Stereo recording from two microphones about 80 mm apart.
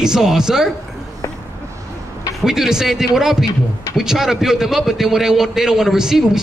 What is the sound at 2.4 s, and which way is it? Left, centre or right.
A man's voice, centre.